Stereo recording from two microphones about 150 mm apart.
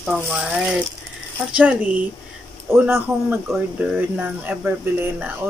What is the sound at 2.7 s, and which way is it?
Speech, 15° right (ahead or behind).